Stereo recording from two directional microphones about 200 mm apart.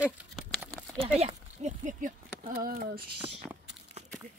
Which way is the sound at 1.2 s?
40° right (ahead or behind).